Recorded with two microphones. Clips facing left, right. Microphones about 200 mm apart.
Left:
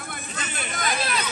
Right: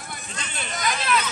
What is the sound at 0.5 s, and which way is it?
Speech, 55° left (ahead or behind).